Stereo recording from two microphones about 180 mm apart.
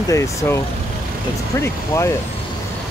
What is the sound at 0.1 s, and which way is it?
Speech, 15° left (ahead or behind).